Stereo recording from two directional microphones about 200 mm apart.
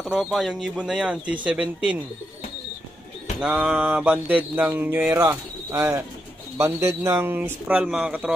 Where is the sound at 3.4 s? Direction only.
5° right (ahead or behind).